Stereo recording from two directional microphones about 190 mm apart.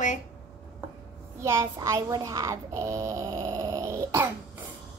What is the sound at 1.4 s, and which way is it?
A child's voice, 15° right (ahead or behind).